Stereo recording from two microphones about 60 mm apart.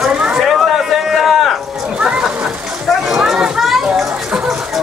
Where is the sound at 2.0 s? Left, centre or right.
Centre.